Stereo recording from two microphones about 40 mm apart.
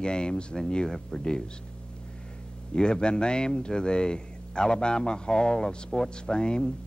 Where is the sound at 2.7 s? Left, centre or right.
Left.